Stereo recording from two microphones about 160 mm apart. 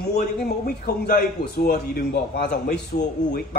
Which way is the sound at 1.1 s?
80° left.